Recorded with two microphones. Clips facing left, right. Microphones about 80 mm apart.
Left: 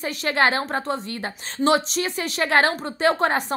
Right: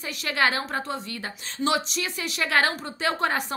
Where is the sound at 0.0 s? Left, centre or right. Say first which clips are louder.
Left 4 dB; left.